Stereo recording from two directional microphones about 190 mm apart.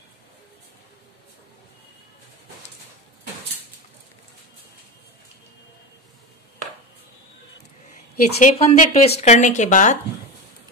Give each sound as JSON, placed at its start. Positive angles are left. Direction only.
{"t": 7.9, "sound": "speech", "side_deg": 45}